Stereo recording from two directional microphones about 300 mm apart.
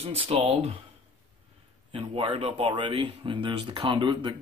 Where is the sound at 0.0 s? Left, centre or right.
Centre.